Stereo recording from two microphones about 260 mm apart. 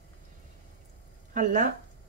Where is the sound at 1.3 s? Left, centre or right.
Right.